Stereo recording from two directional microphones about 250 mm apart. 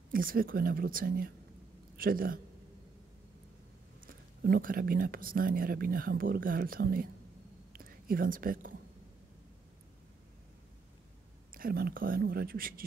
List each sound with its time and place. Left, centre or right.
0.1 s speech: right
4.1 s speech: right
7.7 s whispering: right
11.5 s speech: right